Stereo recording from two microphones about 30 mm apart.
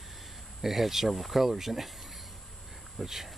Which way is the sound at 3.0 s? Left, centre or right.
Centre.